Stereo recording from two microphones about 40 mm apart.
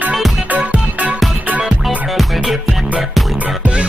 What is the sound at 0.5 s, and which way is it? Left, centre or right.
Music, right.